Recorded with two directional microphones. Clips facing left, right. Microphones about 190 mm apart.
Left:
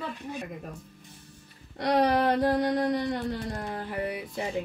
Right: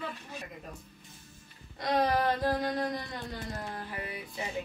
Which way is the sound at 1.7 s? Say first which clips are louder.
Left 4 dB; 70° left (ahead or behind).